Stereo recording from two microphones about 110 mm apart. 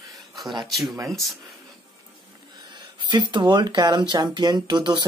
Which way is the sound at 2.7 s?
40° right (ahead or behind).